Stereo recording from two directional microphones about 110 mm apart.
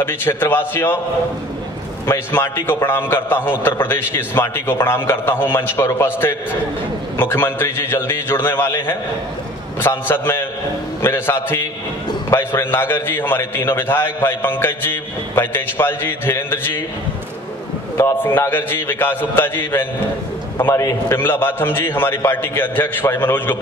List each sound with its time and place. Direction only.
0.0 s a man's voice: 20° left (ahead or behind)
2.0 s a man's voice: 25° left (ahead or behind)
17.9 s a man's voice: 25° left (ahead or behind)